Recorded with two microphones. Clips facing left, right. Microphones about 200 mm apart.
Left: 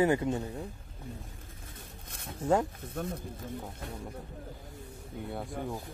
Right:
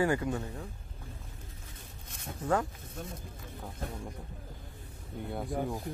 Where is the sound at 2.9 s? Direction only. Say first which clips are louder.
Left 9 dB; 60° left (ahead or behind).